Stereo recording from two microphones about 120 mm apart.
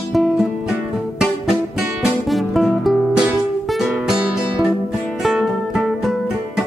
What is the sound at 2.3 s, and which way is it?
Music, centre (ahead or behind).